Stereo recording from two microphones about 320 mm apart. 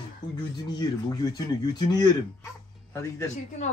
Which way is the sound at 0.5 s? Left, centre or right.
Centre.